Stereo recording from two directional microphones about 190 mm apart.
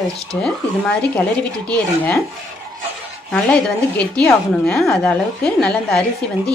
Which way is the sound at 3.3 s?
5° left (ahead or behind).